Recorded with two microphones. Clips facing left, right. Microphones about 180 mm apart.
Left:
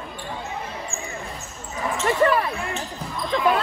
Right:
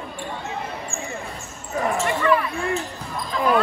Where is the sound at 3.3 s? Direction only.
40° right (ahead or behind).